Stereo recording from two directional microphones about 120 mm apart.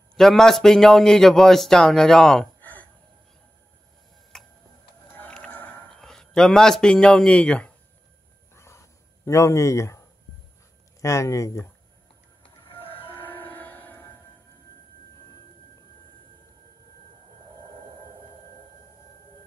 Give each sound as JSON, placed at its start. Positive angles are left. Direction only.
{"t": 0.1, "sound": "a man's voice", "side_deg": 5}
{"t": 4.3, "sound": "tick-tock", "side_deg": 5}
{"t": 5.2, "sound": "a sound", "side_deg": 10}
{"t": 5.9, "sound": "speech", "side_deg": 5}
{"t": 8.5, "sound": "a sound", "side_deg": 25}
{"t": 11.0, "sound": "speech", "side_deg": 25}
{"t": 12.6, "sound": "train", "side_deg": 50}
{"t": 13.1, "sound": "music", "side_deg": 15}